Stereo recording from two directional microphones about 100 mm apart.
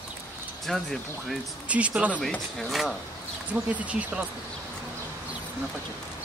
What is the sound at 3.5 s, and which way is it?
Speech, 15° right (ahead or behind).